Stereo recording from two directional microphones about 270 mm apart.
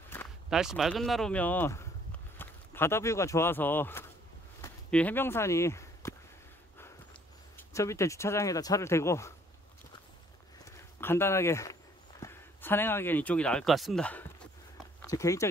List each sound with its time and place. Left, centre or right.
0.1 s speech: centre
4.6 s walk: centre
7.5 s speech: centre
11.0 s speech: centre